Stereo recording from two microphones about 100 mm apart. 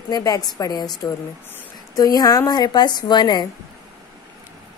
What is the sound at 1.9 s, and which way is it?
Speech, 40° left (ahead or behind).